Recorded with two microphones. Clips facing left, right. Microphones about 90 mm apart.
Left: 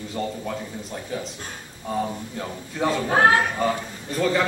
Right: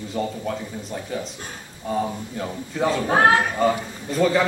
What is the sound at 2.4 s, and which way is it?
Speech, 5° right (ahead or behind).